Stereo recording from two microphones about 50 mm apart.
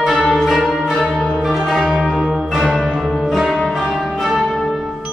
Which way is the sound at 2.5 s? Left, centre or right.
Centre.